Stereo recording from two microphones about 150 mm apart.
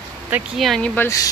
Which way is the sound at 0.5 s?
Centre (ahead or behind).